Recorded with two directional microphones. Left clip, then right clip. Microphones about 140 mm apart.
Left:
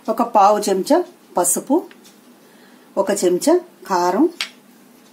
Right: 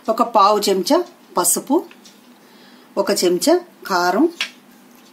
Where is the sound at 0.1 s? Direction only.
50° left (ahead or behind).